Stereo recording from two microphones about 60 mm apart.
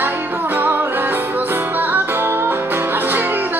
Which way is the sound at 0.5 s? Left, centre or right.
Right.